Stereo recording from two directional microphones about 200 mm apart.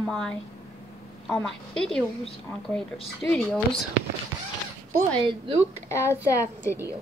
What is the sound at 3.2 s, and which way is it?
Speech, 5° left (ahead or behind).